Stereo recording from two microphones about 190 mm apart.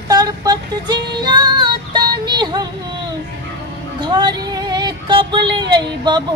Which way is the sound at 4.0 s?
20° right (ahead or behind).